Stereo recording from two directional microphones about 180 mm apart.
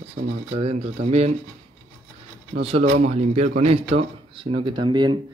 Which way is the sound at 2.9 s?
40° right (ahead or behind).